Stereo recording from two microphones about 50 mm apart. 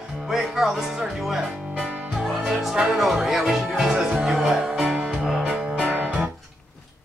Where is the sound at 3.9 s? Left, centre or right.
Centre.